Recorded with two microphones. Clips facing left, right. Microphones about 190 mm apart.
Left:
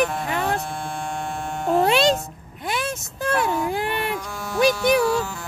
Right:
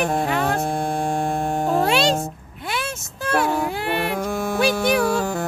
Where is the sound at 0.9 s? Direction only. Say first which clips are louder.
Right 7 dB; 35° right (ahead or behind).